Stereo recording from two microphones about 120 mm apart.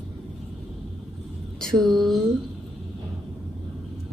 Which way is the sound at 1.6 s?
5° left (ahead or behind).